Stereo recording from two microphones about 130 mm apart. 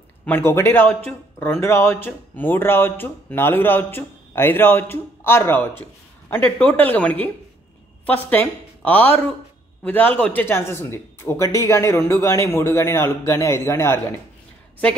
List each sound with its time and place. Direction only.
0.2 s a woman's voice: 15° left (ahead or behind)